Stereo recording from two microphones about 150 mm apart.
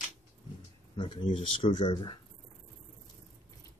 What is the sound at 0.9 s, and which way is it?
Speech, 30° left (ahead or behind).